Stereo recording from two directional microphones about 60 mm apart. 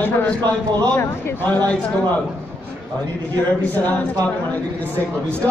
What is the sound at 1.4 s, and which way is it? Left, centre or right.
Speech, left.